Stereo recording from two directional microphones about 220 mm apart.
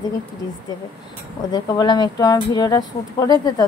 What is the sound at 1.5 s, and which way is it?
A woman's voice, 20° left (ahead or behind).